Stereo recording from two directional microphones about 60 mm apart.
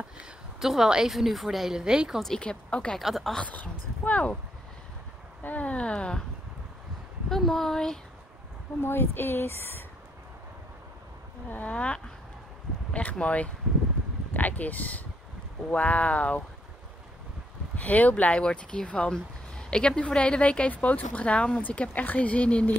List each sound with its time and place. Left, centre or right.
0.6 s speech: centre
2.4 s speech: centre
3.0 s speech: centre
3.5 s speech: left
5.4 s speech: left
7.2 s speech: centre
8.8 s speech: left
11.5 s speech: left
13.2 s speech: left
17.7 s speech: left